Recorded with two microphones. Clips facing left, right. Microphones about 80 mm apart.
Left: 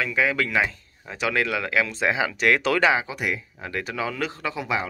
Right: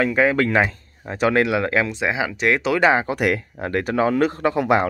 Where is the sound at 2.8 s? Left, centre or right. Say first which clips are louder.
Right 4 dB; right.